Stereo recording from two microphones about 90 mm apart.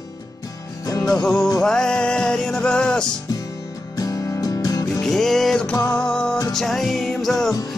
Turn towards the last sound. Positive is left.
turn(degrees=0)  # may be behind; listen again after turning